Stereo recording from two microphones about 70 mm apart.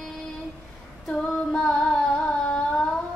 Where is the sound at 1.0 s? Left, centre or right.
Centre.